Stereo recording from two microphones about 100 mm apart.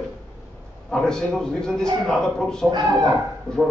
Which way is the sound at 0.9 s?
5° left (ahead or behind).